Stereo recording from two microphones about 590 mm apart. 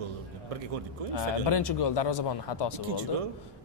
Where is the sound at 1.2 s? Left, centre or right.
Left.